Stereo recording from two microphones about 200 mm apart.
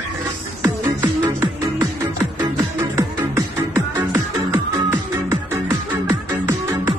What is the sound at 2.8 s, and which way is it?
Music, 15° right (ahead or behind).